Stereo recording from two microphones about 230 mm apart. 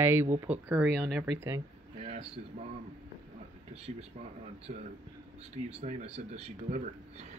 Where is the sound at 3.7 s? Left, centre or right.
Right.